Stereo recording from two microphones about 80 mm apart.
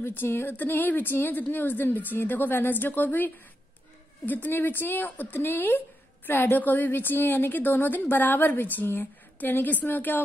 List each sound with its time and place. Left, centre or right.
0.0 s a woman's voice: left
4.3 s a woman's voice: left